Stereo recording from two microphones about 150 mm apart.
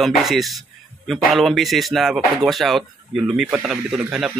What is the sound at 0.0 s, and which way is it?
A man's voice, centre (ahead or behind).